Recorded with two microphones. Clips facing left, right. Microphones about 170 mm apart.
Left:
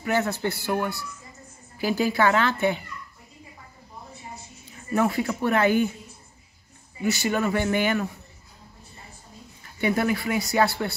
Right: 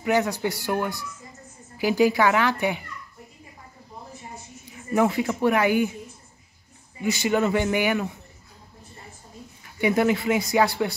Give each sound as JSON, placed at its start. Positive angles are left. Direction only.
{"t": 0.0, "sound": "speech", "side_deg": -15}
{"t": 4.9, "sound": "speech", "side_deg": -15}
{"t": 7.0, "sound": "speech", "side_deg": -15}
{"t": 9.8, "sound": "speech", "side_deg": -15}